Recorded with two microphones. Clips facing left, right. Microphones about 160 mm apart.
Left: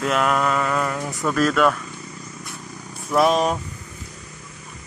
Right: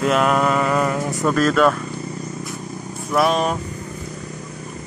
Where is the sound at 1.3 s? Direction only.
5° left (ahead or behind).